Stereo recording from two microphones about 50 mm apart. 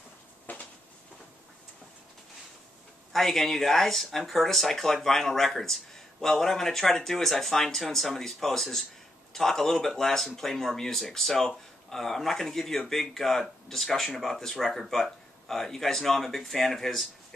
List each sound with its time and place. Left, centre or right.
0.5 s train: left
3.1 s speech: centre